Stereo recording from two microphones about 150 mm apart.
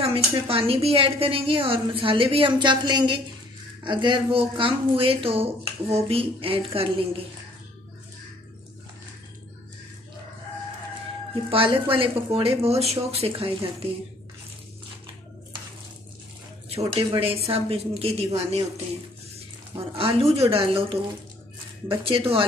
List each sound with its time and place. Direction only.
0.0 s a woman's voice: 40° right (ahead or behind)
11.5 s a woman's voice: 35° right (ahead or behind)
16.9 s a woman's voice: 35° right (ahead or behind)
19.7 s a woman's voice: 40° right (ahead or behind)
22.0 s a woman's voice: 35° right (ahead or behind)